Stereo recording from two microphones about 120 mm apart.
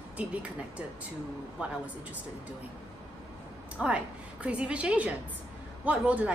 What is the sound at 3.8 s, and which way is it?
A woman's voice, 10° right (ahead or behind).